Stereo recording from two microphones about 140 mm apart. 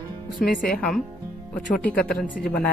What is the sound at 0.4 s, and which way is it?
Speech, 90° left.